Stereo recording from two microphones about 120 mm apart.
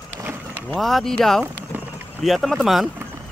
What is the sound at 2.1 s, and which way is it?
Speech, centre (ahead or behind).